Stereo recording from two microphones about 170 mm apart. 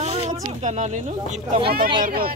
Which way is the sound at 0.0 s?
35° right (ahead or behind).